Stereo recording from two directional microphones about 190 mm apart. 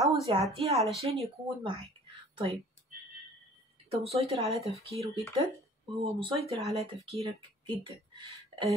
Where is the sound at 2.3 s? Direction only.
30° right (ahead or behind).